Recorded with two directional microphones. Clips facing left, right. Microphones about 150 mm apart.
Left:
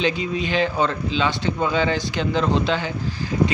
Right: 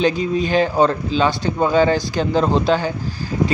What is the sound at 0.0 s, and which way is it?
Speech, 40° right (ahead or behind).